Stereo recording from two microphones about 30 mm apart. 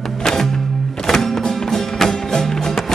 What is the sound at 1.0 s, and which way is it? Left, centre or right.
Music, centre.